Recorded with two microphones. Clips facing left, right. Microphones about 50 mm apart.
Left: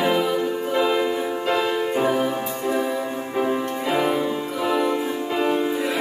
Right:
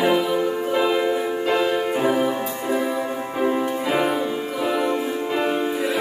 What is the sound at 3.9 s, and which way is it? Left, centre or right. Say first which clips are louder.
Music: left 2 dB; centre.